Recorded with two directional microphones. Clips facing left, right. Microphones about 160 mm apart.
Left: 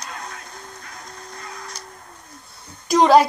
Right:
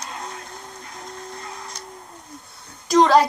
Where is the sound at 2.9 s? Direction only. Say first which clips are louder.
Left 1 dB; 5° left (ahead or behind).